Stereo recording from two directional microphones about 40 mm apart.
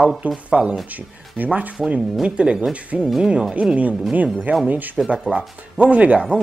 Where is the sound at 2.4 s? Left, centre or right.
Right.